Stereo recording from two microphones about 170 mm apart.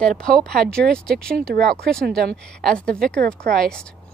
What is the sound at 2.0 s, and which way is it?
Speech, 70° right (ahead or behind).